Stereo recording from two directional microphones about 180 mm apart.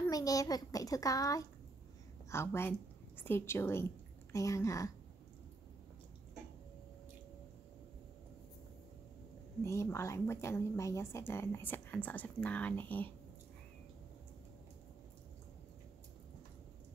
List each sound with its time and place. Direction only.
0.0 s a child's voice: 20° left (ahead or behind)
9.6 s a woman's voice: 15° left (ahead or behind)